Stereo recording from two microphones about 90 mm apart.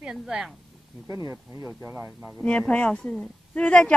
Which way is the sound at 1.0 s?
35° right (ahead or behind).